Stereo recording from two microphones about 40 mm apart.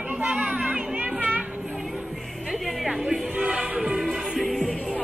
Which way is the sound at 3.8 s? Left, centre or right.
Centre.